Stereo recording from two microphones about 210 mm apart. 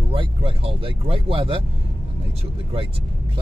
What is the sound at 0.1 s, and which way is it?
Speech, 25° right (ahead or behind).